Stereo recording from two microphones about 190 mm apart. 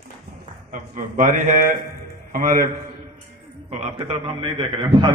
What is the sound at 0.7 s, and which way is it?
A man's voice, 45° right (ahead or behind).